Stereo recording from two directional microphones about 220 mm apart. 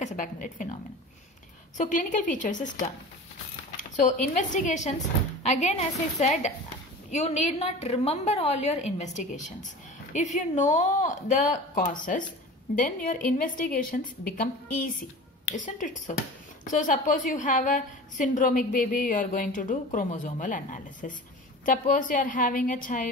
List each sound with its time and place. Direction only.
0.0 s a woman's voice: 35° left (ahead or behind)
1.8 s a woman's voice: 35° left (ahead or behind)